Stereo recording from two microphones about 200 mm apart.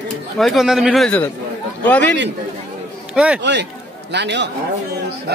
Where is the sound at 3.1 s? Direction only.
5° right (ahead or behind).